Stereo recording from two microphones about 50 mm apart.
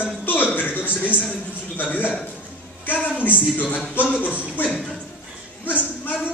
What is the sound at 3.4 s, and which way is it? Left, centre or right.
A man's voice, left.